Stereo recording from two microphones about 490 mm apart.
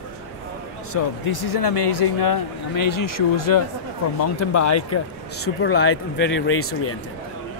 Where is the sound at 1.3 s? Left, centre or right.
Left.